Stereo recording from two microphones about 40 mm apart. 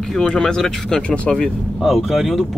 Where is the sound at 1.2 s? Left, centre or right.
Centre.